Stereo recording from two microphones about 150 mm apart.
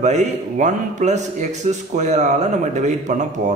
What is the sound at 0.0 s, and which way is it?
A man's voice, 50° right (ahead or behind).